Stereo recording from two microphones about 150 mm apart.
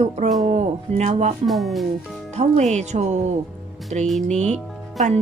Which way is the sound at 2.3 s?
50° right (ahead or behind).